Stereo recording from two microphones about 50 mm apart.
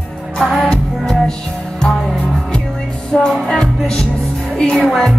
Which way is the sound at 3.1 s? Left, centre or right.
Centre.